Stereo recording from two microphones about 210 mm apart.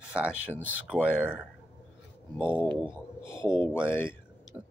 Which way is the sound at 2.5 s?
10° left (ahead or behind).